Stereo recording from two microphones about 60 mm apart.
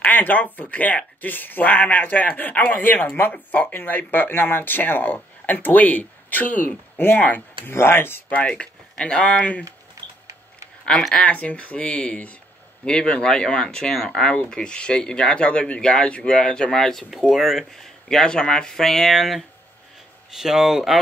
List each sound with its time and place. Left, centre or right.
0.0 s speech: left
7.7 s speech: left
8.3 s speech: left
10.9 s speech: centre